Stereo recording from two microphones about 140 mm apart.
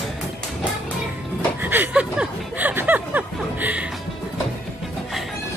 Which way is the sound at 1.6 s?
15° right (ahead or behind).